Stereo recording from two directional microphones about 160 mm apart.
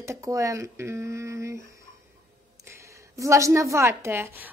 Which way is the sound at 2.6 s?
15° right (ahead or behind).